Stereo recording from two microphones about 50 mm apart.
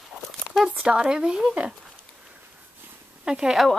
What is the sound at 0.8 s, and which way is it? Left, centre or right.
Speech, centre.